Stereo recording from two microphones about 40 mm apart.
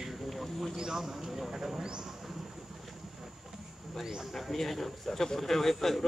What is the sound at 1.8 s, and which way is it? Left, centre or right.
Speech, right.